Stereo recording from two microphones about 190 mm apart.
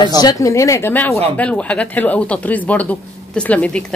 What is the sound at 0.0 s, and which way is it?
Speech, 20° left (ahead or behind).